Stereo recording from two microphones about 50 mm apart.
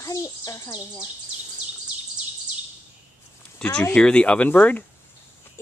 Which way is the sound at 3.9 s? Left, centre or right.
Left.